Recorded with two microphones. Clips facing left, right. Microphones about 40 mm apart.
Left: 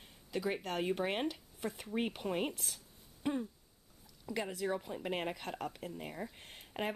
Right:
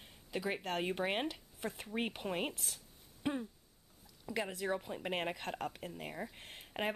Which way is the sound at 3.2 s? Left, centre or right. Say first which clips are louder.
Left 1 dB; centre.